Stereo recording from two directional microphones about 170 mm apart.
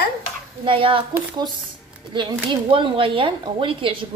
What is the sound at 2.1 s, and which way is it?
Speech, 30° right (ahead or behind).